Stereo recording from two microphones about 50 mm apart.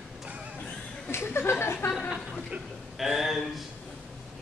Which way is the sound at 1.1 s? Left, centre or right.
Left.